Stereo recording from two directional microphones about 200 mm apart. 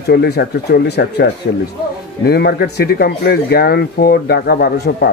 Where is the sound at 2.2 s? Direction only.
55° left (ahead or behind).